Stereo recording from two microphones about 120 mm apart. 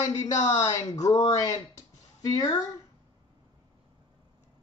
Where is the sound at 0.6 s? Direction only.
30° left (ahead or behind).